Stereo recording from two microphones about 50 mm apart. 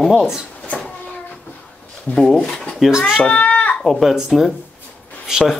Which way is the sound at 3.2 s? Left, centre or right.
Left.